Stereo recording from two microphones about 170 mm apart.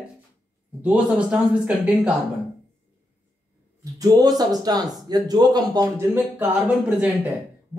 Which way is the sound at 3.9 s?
20° right (ahead or behind).